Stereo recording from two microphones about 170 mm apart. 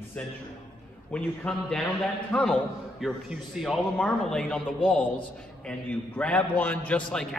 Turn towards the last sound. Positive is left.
turn(degrees=5)  # may be behind; listen again after turning